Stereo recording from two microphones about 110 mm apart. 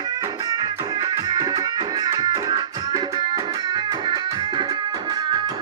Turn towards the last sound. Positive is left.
turn(degrees=-45)  # may be behind; listen again after turning